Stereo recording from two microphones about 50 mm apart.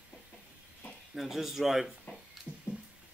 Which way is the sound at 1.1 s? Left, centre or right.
Centre.